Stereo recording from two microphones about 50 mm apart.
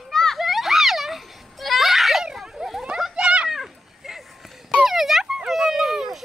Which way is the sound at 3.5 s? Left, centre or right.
Centre.